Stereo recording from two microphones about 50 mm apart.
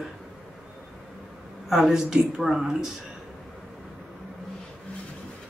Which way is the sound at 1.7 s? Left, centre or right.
Centre.